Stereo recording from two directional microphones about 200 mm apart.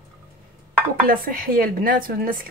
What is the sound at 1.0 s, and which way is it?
Speech, 45° right (ahead or behind).